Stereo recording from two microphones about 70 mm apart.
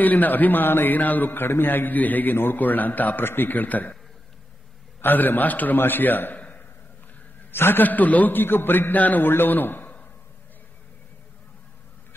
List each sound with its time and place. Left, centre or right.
0.0 s a man's voice: left
5.0 s a man's voice: left
7.5 s a man's voice: left